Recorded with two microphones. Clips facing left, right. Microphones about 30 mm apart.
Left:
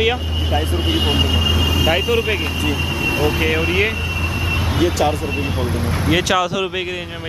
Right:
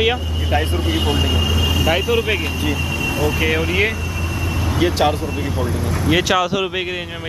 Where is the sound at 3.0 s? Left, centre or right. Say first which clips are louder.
Left 2 dB; left.